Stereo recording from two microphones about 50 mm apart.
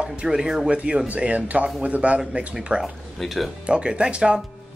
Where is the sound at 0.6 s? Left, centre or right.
Right.